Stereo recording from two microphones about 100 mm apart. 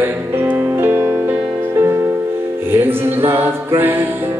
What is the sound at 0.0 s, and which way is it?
Music, 20° right (ahead or behind).